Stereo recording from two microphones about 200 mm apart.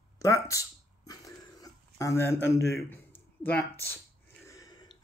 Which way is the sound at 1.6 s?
15° left (ahead or behind).